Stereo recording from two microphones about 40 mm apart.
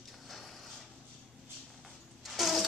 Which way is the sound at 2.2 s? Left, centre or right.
Centre.